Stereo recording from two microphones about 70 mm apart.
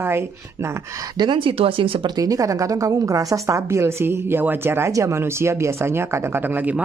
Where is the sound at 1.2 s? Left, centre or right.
Right.